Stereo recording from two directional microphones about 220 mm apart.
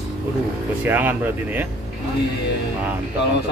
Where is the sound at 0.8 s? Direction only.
10° right (ahead or behind).